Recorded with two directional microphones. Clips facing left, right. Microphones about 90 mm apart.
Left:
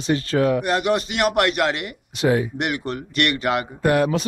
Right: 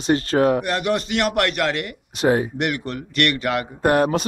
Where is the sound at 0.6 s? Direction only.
15° left (ahead or behind).